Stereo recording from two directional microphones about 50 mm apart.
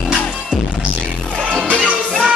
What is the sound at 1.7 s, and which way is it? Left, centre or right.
Music, centre.